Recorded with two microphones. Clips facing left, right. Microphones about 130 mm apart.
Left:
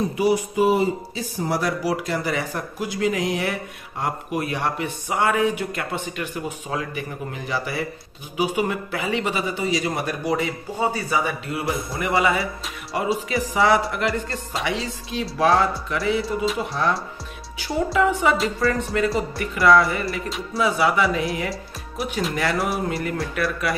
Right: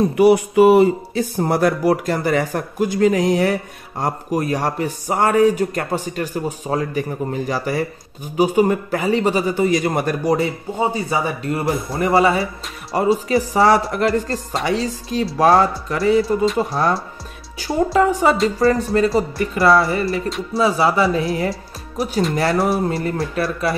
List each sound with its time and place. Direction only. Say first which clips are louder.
0.1 s a man's voice: right 8 dB; 65° right (ahead or behind); by 10.5 s 40° right (ahead or behind)
10.8 s speech: right 3 dB; 25° right (ahead or behind)
11.2 s a man's voice: right 5 dB; 40° right (ahead or behind)
18.6 s a man's voice: right 6 dB; 35° right (ahead or behind)